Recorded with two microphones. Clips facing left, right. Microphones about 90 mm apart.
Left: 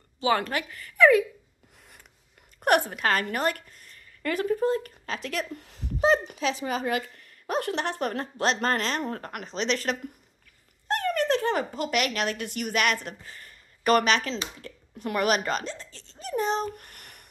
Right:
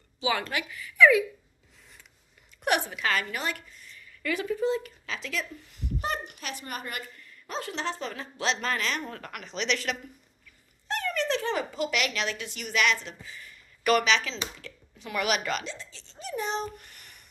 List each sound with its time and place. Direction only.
0.2 s a woman's voice: 40° left (ahead or behind)
2.6 s a woman's voice: 45° left (ahead or behind)
10.9 s speech: 50° left (ahead or behind)